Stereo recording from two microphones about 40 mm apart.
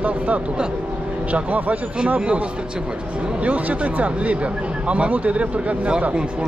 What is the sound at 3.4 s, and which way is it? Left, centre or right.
Speech, right.